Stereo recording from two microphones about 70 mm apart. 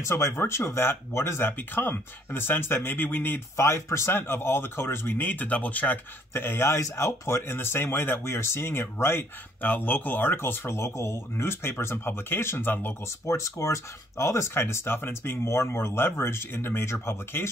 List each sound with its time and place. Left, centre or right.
0.0 s speech: left
6.3 s speech: left
6.8 s speech: left
13.3 s speech: left